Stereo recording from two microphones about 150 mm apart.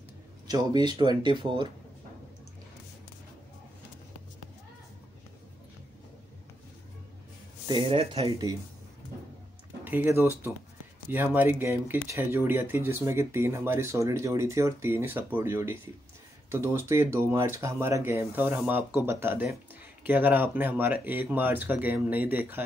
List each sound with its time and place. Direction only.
0.5 s speech: 25° right (ahead or behind)
7.6 s speech: 35° right (ahead or behind)
9.8 s speech: 15° right (ahead or behind)